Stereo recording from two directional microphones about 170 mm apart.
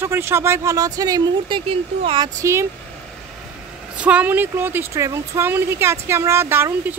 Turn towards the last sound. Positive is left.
turn(degrees=-15)  # may be behind; listen again after turning